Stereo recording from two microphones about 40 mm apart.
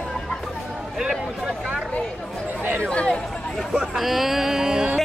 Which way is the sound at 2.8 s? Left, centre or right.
Left.